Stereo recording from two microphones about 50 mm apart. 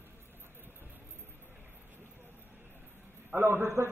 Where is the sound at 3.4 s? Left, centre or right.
Right.